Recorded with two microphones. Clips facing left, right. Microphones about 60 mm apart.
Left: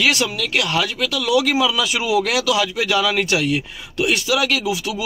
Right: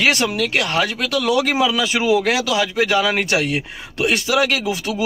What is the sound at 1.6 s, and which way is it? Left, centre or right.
A man's voice, right.